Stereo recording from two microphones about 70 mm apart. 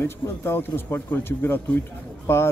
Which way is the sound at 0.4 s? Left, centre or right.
Left.